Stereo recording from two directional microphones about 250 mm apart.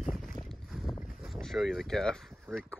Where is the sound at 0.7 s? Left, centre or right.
Centre.